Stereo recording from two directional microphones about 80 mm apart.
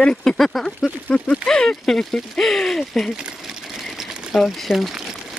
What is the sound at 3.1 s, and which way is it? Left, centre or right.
Sewing machine, centre.